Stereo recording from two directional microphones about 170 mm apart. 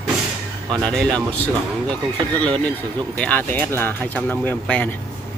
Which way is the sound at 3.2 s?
10° left (ahead or behind).